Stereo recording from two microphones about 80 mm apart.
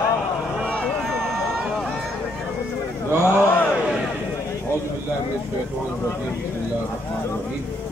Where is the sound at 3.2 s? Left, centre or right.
Left.